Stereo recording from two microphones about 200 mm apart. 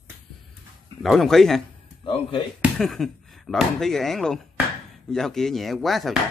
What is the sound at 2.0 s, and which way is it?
Speech, 25° left (ahead or behind).